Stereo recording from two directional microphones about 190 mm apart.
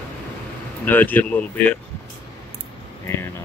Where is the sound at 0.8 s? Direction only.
10° left (ahead or behind).